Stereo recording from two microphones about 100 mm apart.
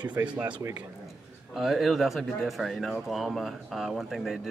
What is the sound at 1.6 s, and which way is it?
Speech, centre (ahead or behind).